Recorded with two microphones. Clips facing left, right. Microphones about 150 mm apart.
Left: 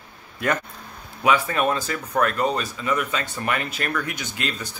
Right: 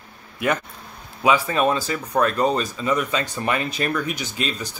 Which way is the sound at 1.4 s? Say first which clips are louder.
Right 2 dB; 20° right (ahead or behind).